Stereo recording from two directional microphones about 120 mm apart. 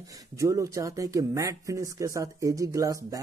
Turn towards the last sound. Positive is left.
turn(degrees=-30)  # may be behind; listen again after turning